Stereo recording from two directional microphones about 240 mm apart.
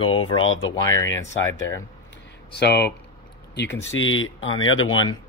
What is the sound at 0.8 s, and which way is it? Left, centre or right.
Speech, centre.